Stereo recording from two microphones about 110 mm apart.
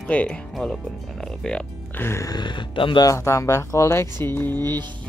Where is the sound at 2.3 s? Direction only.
45° left (ahead or behind).